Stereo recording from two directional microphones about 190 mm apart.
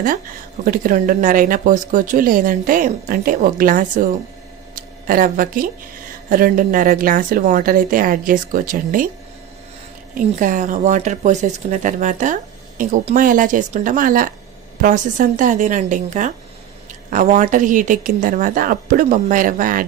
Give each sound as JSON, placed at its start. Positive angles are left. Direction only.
{"t": 0.7, "sound": "a woman's voice", "side_deg": -45}
{"t": 10.1, "sound": "a woman's voice", "side_deg": -45}